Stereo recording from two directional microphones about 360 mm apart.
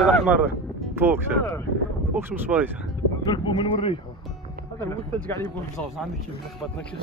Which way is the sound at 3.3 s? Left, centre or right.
Centre.